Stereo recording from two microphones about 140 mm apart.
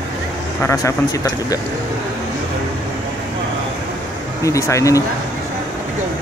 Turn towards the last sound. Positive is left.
turn(degrees=20)  # may be behind; listen again after turning